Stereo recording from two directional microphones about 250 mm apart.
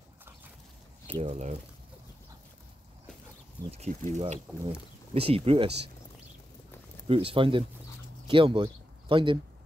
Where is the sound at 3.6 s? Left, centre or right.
Right.